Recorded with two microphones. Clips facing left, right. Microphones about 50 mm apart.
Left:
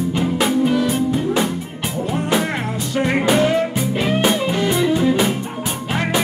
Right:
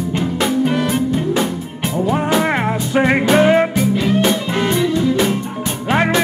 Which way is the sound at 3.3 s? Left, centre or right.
Right.